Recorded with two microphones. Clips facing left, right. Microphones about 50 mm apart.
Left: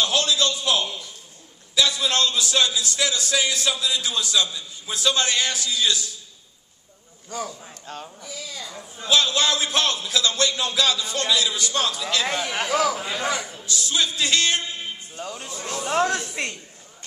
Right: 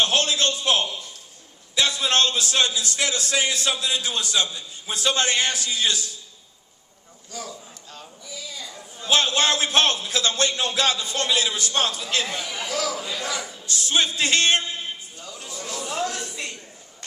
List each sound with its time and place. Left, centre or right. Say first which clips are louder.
0.0 s a sound: even; right
1.8 s a man's voice: even; right
7.2 s a man's voice: left 5 dB; left
7.6 s a sound: left 6 dB; left
9.1 s a man's voice: even; right
12.3 s a man's voice: left 5 dB; left
12.6 s a man's voice: left 5 dB; left
13.7 s a man's voice: right 2 dB; right
15.1 s a man's voice: left 4 dB; left